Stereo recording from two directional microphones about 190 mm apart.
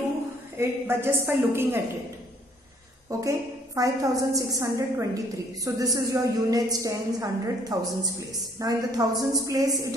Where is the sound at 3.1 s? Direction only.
15° right (ahead or behind).